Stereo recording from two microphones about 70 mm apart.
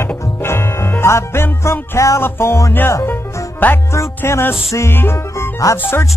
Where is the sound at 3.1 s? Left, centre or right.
Left.